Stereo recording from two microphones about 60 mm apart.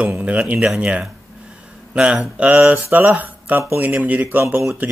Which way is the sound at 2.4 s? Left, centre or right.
Right.